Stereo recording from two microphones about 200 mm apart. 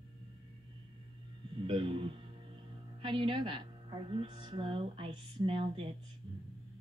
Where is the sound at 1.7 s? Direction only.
25° right (ahead or behind).